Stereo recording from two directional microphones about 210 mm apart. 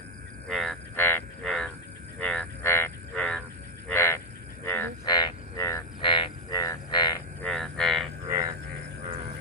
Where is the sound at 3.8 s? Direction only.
10° left (ahead or behind).